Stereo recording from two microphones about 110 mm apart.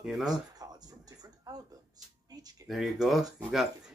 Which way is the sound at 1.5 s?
35° right (ahead or behind).